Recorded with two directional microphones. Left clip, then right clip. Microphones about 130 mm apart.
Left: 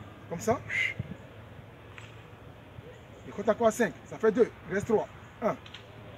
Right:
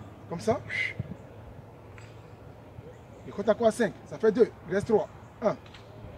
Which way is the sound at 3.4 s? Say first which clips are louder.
Right 1 dB; 35° right (ahead or behind).